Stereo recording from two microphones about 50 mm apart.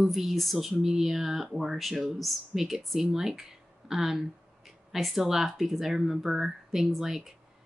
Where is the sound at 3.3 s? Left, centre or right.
Centre.